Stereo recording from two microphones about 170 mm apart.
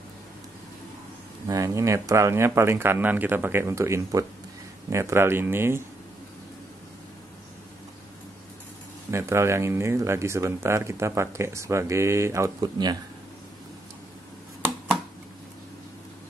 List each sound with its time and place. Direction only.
1.5 s speech: 20° right (ahead or behind)
9.1 s speech: 15° right (ahead or behind)